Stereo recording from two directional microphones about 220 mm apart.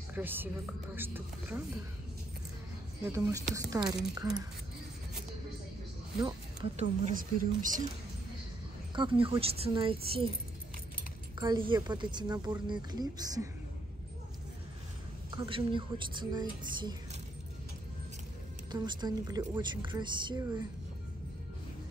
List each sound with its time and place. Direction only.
0.1 s speech: 10° right (ahead or behind)
3.1 s speech: 15° right (ahead or behind)
6.2 s speech: 25° right (ahead or behind)
7.2 s speech: 35° right (ahead or behind)
8.9 s speech: 20° right (ahead or behind)
11.3 s speech: 20° right (ahead or behind)
15.3 s speech: 20° right (ahead or behind)
18.7 s speech: 20° right (ahead or behind)